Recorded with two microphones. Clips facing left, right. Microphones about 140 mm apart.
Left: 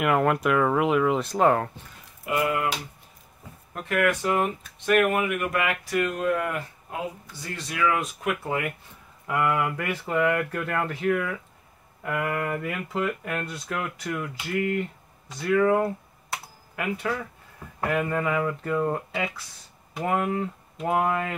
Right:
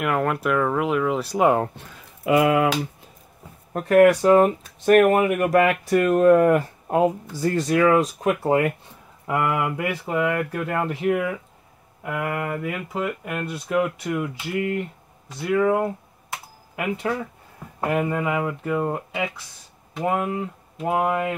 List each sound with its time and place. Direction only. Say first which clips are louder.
0.0 s speech: left 1 dB; centre (ahead or behind)
3.7 s speech: right 10 dB; 35° right (ahead or behind)
9.3 s speech: right 2 dB; 25° right (ahead or behind)
12.0 s speech: right 1 dB; 10° right (ahead or behind); by 18.1 s 25° right (ahead or behind)
18.1 s speech: right 1 dB; 15° right (ahead or behind)